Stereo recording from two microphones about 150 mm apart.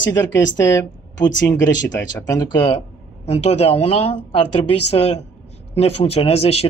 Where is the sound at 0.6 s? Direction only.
25° left (ahead or behind).